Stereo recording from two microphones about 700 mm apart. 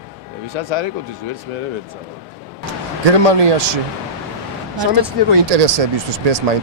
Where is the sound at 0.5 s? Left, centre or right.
Right.